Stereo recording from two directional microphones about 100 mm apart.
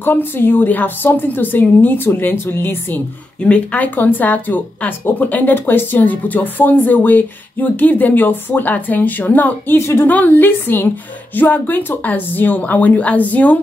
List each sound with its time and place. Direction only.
0.0 s a woman's voice: 20° left (ahead or behind)